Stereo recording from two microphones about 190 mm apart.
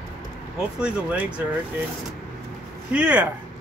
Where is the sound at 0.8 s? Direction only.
5° right (ahead or behind).